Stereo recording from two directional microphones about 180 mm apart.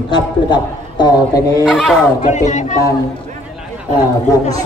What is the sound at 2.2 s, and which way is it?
Speech, 45° left (ahead or behind).